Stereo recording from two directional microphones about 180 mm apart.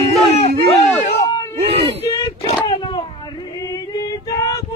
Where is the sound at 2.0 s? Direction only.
15° left (ahead or behind).